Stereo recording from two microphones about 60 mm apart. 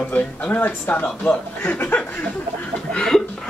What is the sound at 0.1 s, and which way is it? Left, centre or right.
Speech, left.